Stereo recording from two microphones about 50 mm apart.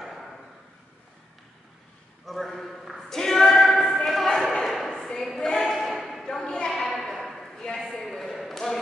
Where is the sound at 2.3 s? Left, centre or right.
Centre.